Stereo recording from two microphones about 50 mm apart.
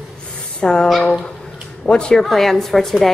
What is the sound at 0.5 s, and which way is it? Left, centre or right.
Speech, centre.